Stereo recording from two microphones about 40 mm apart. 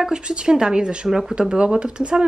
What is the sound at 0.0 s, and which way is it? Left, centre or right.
Speech, right.